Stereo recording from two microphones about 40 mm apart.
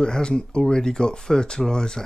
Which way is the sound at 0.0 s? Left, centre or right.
Centre.